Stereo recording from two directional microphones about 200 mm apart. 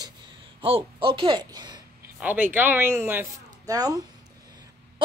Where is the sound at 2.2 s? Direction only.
10° right (ahead or behind).